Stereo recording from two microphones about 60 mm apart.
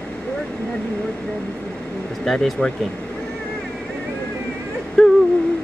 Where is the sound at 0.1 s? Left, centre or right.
Centre.